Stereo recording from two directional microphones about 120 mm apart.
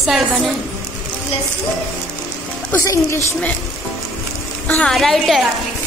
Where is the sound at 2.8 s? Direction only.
25° left (ahead or behind).